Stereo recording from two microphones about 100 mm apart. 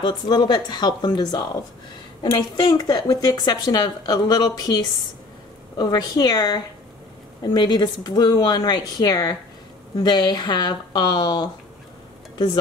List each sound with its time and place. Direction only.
0.0 s speech: 45° left (ahead or behind)